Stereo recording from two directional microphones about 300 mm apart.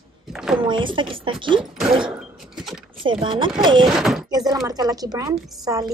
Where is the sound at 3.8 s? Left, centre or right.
Centre.